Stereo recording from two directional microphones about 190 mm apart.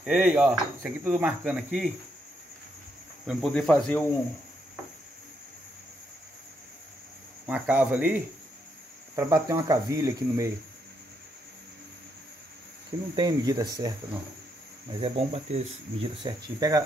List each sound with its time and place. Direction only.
0.0 s speech: 5° right (ahead or behind)
3.3 s speech: centre (ahead or behind)
7.4 s speech: 5° right (ahead or behind)
13.1 s speech: 20° right (ahead or behind)